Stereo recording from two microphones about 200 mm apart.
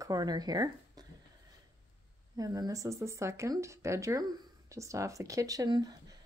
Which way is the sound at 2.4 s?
20° right (ahead or behind).